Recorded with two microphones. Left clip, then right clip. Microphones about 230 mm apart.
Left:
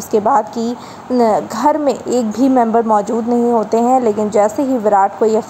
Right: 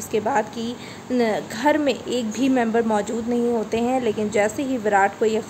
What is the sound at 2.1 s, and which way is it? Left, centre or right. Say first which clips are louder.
Speech: left 8 dB; centre.